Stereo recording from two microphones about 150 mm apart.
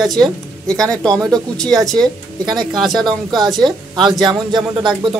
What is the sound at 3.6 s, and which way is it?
A woman's voice, 30° right (ahead or behind).